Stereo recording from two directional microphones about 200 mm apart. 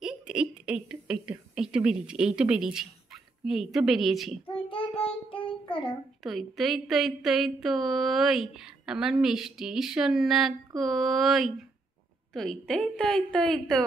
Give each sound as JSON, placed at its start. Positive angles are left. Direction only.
{"t": 0.0, "sound": "speech", "side_deg": -5}
{"t": 4.6, "sound": "child singing", "side_deg": 25}
{"t": 5.7, "sound": "a child's voice", "side_deg": 25}
{"t": 6.2, "sound": "speech", "side_deg": 0}